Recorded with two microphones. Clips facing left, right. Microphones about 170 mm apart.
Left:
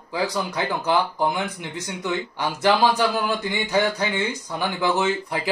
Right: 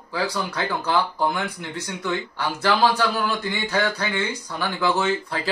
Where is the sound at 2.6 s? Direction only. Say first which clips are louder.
Left 1 dB; 15° left (ahead or behind).